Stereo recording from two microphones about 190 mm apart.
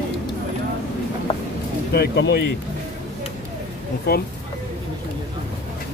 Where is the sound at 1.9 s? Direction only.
60° left (ahead or behind).